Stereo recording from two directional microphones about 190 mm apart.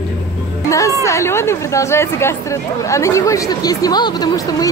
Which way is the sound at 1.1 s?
15° left (ahead or behind).